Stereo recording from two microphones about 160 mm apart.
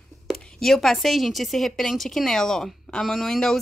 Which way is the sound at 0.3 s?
5° left (ahead or behind).